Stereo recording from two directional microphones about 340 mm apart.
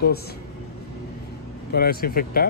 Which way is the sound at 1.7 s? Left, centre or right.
Left.